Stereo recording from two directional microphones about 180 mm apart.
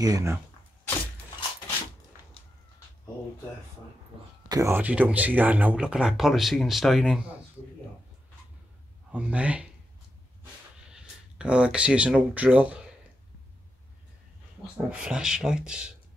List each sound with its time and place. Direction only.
0.0 s speech: 15° right (ahead or behind)
4.5 s speech: 15° right (ahead or behind)
9.1 s speech: 5° right (ahead or behind)
10.9 s speech: 5° right (ahead or behind)
14.9 s speech: 5° right (ahead or behind)